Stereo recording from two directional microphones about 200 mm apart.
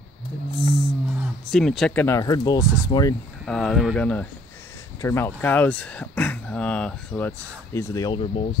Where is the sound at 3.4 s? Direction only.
5° left (ahead or behind); by 8.5 s 30° left (ahead or behind).